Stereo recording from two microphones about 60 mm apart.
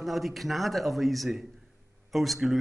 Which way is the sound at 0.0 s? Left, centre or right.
Centre.